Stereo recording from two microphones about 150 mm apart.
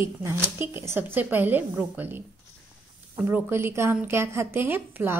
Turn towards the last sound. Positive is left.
turn(degrees=-15)  # may be behind; listen again after turning